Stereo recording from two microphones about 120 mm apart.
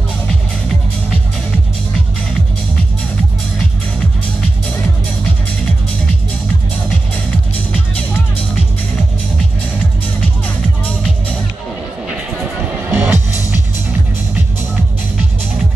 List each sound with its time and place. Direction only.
12.9 s music: 15° right (ahead or behind)